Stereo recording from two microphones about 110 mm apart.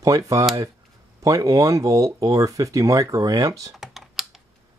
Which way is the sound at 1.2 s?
30° right (ahead or behind).